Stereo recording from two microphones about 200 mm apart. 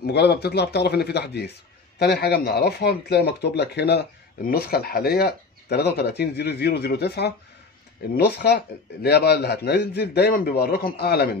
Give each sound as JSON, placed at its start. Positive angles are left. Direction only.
{"t": 0.0, "sound": "a man's voice", "side_deg": 55}